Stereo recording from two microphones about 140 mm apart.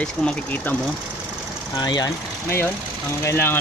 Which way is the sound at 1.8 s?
30° left (ahead or behind).